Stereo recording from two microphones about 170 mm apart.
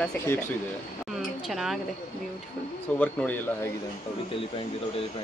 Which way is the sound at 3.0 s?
10° left (ahead or behind).